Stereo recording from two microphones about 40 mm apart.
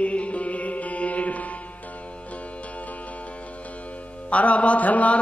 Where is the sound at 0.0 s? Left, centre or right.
Left.